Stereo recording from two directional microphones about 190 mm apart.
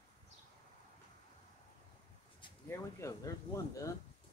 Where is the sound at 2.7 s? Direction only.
15° left (ahead or behind).